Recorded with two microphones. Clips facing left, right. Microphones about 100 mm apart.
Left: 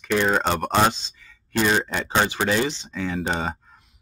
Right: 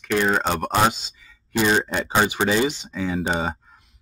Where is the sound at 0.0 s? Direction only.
Centre (ahead or behind).